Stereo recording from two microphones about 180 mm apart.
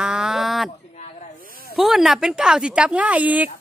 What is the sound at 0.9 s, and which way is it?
Snake, 40° left (ahead or behind).